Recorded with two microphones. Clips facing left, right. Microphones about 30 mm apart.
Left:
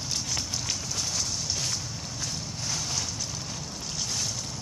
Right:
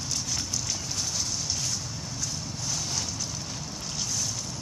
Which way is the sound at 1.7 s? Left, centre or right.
Left.